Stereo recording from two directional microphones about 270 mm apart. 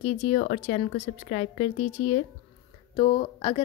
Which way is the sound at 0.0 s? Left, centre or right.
Left.